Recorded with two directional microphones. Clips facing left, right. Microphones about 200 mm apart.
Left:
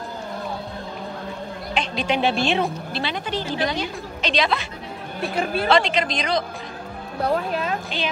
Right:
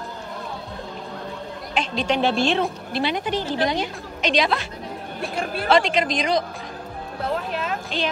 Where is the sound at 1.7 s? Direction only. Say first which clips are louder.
Right 1 dB; 5° left (ahead or behind).